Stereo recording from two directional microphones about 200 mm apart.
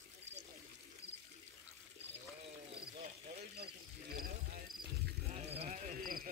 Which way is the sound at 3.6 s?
45° right (ahead or behind).